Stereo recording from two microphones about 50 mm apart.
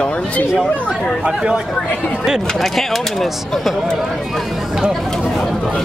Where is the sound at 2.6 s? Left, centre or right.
Centre.